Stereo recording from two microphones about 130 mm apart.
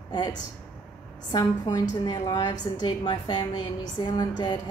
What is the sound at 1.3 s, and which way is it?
A woman's voice, 35° left (ahead or behind).